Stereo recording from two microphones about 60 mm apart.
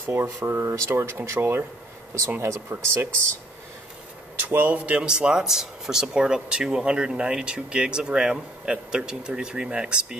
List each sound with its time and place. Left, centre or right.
0.0 s speech: right
2.8 s speech: right
4.4 s speech: right; by 10.1 s centre